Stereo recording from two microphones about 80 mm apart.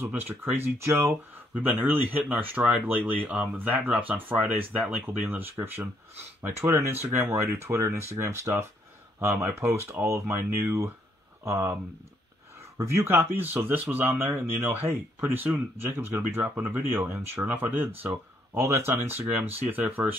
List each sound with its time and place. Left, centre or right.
0.0 s speech: right
1.6 s speech: right
12.7 s speech: right